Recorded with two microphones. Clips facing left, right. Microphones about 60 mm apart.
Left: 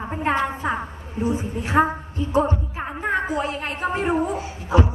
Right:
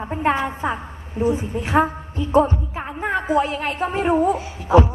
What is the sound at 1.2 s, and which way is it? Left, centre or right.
Speech, right.